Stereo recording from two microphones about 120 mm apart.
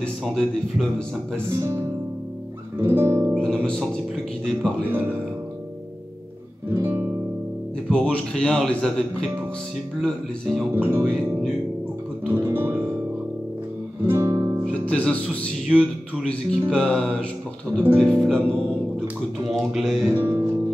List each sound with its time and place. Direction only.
0.2 s speech: centre (ahead or behind)
1.6 s music: 25° right (ahead or behind)
3.3 s speech: 5° left (ahead or behind)
6.7 s music: 20° right (ahead or behind)
7.9 s speech: 10° left (ahead or behind)
10.8 s speech: 20° right (ahead or behind)
11.1 s speech: 5° left (ahead or behind)
12.3 s music: 20° right (ahead or behind)
14.0 s music: 25° right (ahead or behind)
14.7 s speech: 10° left (ahead or behind)
20.1 s music: 20° right (ahead or behind)